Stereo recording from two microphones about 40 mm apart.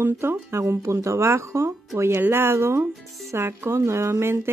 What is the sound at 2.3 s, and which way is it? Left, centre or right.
Speech, right.